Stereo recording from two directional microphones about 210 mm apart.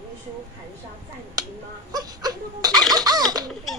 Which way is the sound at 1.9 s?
20° right (ahead or behind).